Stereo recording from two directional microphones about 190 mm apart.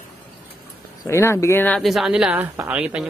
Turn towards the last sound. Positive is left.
turn(degrees=-5)  # may be behind; listen again after turning